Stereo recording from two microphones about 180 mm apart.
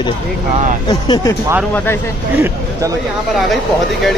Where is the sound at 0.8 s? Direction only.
25° left (ahead or behind).